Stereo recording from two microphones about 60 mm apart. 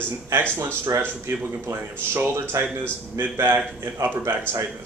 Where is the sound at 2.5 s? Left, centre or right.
Right.